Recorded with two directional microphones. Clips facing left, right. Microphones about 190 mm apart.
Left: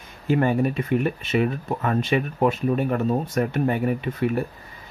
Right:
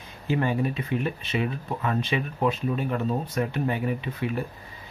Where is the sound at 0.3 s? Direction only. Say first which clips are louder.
Left 5 dB; 50° left (ahead or behind).